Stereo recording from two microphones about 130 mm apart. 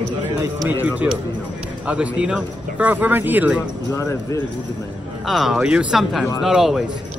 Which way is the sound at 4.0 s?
20° left (ahead or behind).